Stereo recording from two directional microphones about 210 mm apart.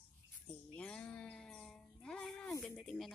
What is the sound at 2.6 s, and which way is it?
Speech, centre (ahead or behind).